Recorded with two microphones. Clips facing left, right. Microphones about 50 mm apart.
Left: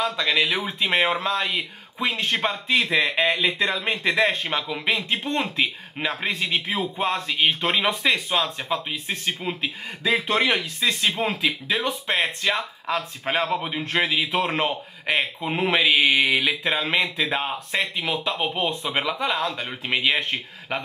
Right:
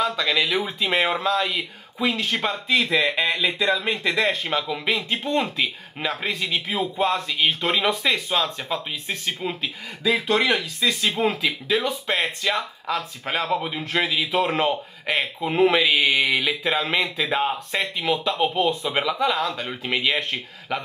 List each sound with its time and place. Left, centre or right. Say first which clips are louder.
0.0 s a man's voice: even; centre
11.1 s a man's voice: right 2 dB; centre